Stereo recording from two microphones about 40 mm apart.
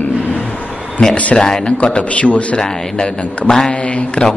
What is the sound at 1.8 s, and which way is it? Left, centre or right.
Speech, left.